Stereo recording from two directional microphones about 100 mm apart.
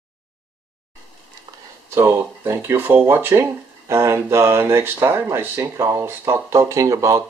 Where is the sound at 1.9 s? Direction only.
25° right (ahead or behind).